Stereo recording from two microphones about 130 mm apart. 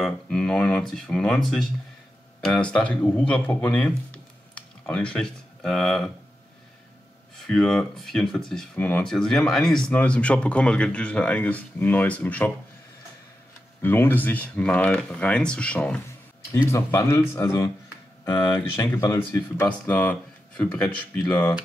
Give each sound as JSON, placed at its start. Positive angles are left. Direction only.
{"t": 0.0, "sound": "speech", "side_deg": 5}
{"t": 7.4, "sound": "speech", "side_deg": 5}
{"t": 13.7, "sound": "speech", "side_deg": 15}
{"t": 16.6, "sound": "speech", "side_deg": 20}
{"t": 18.2, "sound": "speech", "side_deg": 30}
{"t": 18.9, "sound": "speech", "side_deg": 20}